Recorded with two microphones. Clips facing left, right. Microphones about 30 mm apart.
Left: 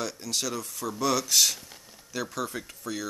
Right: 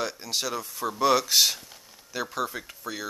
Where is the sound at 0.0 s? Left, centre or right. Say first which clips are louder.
Right 2 dB; centre.